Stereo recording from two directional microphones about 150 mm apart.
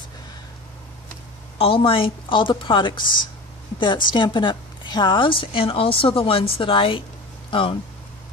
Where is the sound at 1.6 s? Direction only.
35° left (ahead or behind).